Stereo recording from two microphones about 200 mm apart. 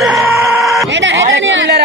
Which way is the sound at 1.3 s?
60° right (ahead or behind).